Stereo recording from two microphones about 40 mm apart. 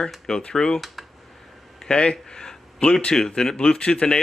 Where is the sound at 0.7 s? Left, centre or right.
Centre.